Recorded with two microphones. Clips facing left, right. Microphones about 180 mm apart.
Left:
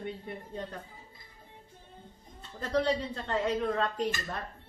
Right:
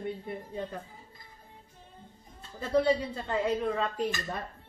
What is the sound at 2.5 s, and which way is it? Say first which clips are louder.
Speech: right 3 dB; 5° right (ahead or behind).